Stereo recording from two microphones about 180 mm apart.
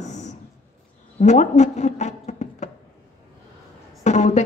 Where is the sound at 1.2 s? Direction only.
40° left (ahead or behind).